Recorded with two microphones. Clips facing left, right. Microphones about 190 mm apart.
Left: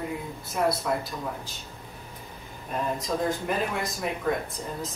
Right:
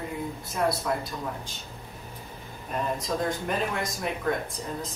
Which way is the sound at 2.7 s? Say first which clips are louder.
Even; centre (ahead or behind).